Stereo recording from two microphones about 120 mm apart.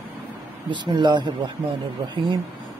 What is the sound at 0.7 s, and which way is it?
Speech, 40° right (ahead or behind).